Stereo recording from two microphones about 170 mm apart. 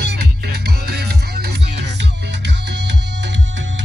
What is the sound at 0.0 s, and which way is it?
Music, 75° right (ahead or behind).